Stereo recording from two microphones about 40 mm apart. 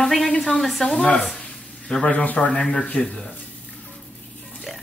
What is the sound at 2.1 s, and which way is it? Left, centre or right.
Speech, left.